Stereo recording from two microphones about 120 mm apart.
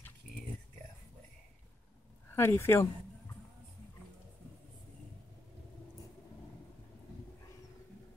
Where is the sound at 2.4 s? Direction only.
20° left (ahead or behind).